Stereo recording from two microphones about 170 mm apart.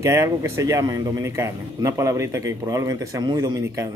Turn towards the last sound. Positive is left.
turn(degrees=-20)  # may be behind; listen again after turning